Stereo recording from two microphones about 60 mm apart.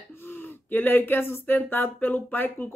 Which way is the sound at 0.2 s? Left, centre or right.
Left.